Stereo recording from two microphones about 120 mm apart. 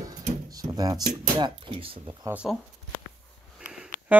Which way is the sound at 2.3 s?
10° right (ahead or behind).